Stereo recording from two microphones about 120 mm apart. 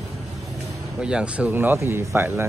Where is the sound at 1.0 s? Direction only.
5° right (ahead or behind).